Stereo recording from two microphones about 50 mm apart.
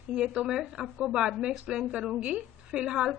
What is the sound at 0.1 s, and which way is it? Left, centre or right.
A woman's voice, centre.